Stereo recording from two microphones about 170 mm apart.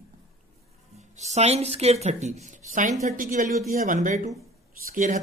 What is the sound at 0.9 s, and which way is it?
Speech, 45° right (ahead or behind).